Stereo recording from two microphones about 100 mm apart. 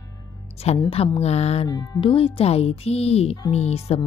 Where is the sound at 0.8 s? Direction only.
75° left (ahead or behind); by 1.7 s 90° left.